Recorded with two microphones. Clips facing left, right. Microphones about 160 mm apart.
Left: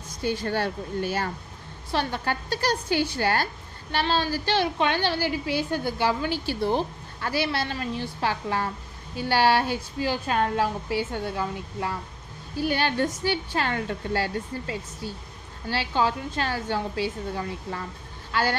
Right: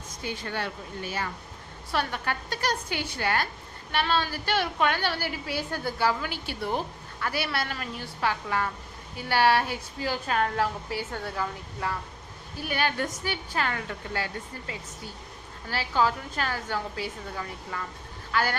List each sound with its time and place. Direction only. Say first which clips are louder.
0.2 s a woman's voice: left 7 dB; 35° left (ahead or behind)
1.9 s a woman's voice: left 2 dB; 30° left (ahead or behind)